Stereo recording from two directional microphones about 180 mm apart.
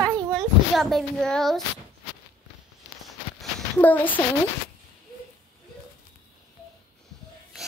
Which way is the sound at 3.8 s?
10° left (ahead or behind).